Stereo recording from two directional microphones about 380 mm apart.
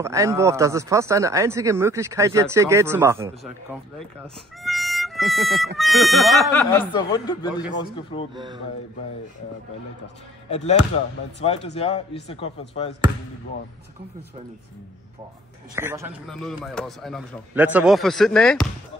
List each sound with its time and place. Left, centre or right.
0.0 s speech: centre
4.2 s music: centre
5.8 s speech: centre
10.5 s speech: centre
15.7 s speech: centre